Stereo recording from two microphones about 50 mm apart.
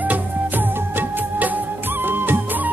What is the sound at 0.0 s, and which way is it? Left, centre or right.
Music, right.